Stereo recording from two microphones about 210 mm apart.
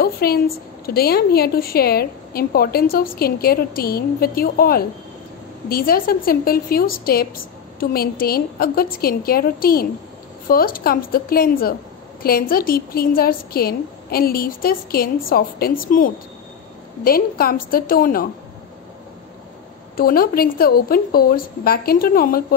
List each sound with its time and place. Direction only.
0.0 s a woman's voice: 45° left (ahead or behind)
20.0 s a woman's voice: 45° left (ahead or behind)